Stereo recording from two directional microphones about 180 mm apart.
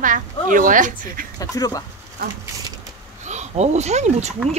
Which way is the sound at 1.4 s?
20° left (ahead or behind).